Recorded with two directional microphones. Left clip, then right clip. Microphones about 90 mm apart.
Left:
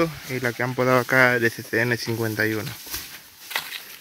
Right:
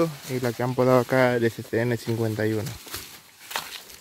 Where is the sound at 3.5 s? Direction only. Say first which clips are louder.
Left 3 dB; 30° right (ahead or behind).